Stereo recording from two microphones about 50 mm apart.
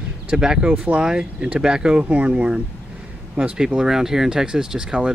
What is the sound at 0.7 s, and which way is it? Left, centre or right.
Speech, right.